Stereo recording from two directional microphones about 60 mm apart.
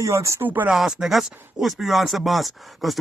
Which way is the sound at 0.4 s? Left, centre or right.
Right.